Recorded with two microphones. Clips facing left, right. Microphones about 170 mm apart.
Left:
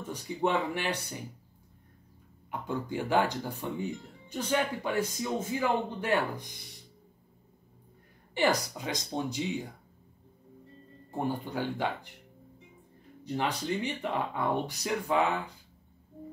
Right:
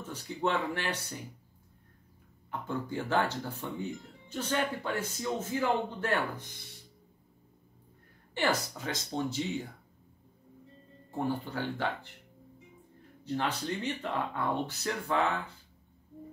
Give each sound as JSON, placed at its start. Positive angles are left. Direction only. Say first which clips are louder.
{"t": 0.1, "sound": "speech", "louder": "left 2 dB", "side_deg": 15}
{"t": 2.5, "sound": "speech", "louder": "left 1 dB", "side_deg": 15}
{"t": 8.4, "sound": "speech", "louder": "left 3 dB", "side_deg": 15}
{"t": 11.1, "sound": "speech", "louder": "even", "side_deg": 15}
{"t": 13.2, "sound": "speech", "louder": "left 1 dB", "side_deg": 15}